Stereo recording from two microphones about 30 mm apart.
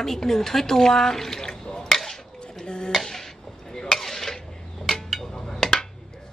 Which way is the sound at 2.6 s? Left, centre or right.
Left.